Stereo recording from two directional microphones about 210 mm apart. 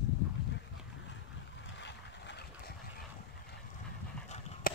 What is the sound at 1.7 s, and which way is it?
Vehicle, 55° left (ahead or behind).